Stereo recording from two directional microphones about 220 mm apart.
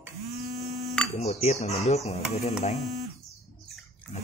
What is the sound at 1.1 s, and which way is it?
Speech, 30° left (ahead or behind).